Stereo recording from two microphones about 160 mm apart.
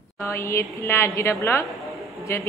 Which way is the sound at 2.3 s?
15° left (ahead or behind).